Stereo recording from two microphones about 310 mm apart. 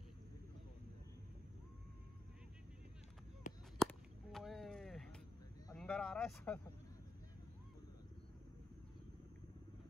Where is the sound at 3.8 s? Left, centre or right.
Centre.